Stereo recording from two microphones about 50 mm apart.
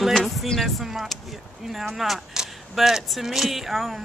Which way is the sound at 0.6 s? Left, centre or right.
Centre.